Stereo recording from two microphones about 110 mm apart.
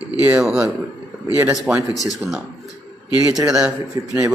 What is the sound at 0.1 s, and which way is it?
Speech, 5° right (ahead or behind).